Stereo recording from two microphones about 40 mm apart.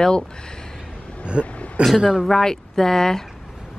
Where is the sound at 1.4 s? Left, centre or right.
Left.